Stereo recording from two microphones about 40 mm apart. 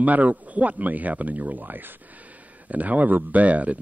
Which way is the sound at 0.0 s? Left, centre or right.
Right.